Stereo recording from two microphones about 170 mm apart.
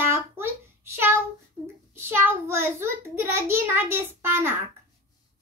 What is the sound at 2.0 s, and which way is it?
A child's voice, 15° right (ahead or behind).